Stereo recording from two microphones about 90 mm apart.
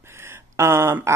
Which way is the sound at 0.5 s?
30° right (ahead or behind).